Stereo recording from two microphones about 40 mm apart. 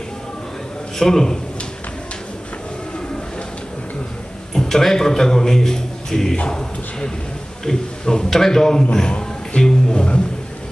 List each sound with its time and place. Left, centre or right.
0.9 s a man's voice: centre
4.6 s a man's voice: centre
6.3 s a man's voice: left